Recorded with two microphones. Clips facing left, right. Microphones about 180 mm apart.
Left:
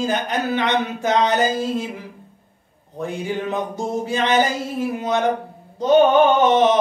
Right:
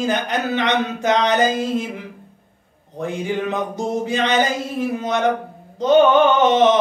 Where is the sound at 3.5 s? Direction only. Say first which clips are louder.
Right 1 dB; 20° right (ahead or behind).